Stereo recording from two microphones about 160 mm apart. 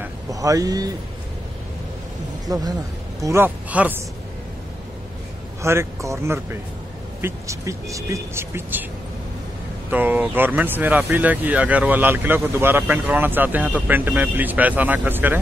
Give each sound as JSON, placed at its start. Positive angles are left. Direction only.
{"t": 0.0, "sound": "vehicle", "side_deg": -20}
{"t": 2.4, "sound": "speech", "side_deg": -25}
{"t": 5.6, "sound": "speech", "side_deg": -15}
{"t": 9.8, "sound": "speech", "side_deg": -10}